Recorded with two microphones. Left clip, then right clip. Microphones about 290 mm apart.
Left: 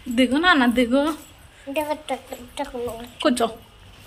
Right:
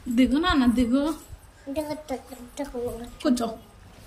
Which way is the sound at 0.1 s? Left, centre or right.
Centre.